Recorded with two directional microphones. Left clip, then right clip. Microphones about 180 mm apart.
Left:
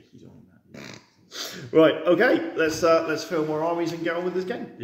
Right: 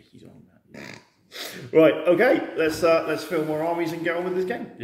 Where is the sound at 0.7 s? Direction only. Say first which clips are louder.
Right 1 dB; 15° left (ahead or behind).